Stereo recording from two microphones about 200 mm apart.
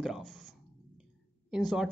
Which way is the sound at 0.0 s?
Centre (ahead or behind).